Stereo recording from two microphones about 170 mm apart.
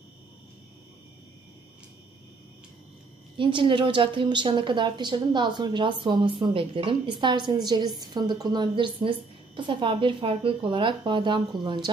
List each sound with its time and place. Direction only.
3.3 s a woman's voice: 30° right (ahead or behind)